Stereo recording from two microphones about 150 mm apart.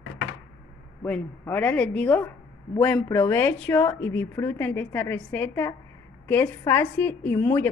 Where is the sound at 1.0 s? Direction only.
10° left (ahead or behind).